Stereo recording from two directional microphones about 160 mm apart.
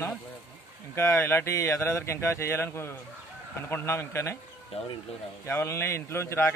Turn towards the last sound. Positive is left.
turn(degrees=15)  # may be behind; listen again after turning